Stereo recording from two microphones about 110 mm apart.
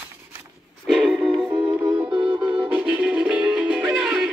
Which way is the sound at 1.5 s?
45° right (ahead or behind).